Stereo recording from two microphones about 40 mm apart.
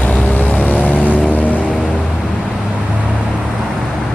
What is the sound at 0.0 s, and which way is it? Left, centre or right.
Vehicle, left.